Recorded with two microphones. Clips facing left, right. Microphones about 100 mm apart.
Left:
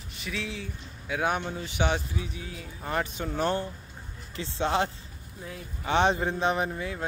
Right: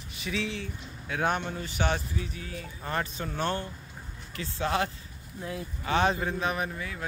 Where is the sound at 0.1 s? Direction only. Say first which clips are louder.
Right 3 dB; centre (ahead or behind).